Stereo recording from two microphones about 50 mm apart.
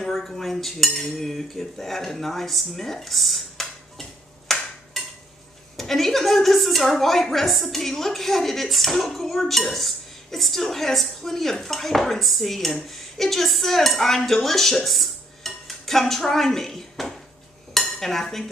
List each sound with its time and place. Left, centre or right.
0.3 s cutlery: centre
5.8 s a woman's voice: centre
17.7 s dishes: centre